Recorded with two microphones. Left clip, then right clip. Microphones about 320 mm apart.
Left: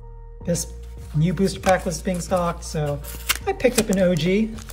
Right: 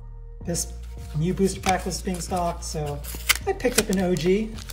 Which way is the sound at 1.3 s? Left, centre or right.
Centre.